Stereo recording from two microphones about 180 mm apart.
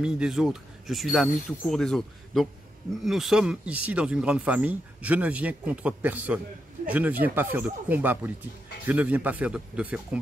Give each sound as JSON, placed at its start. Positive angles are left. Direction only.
{"t": 0.0, "sound": "speech", "side_deg": -5}